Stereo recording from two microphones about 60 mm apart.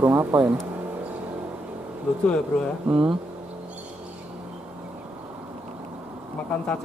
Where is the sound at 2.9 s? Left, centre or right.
Centre.